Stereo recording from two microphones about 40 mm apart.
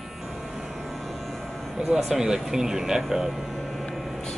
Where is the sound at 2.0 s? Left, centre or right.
Centre.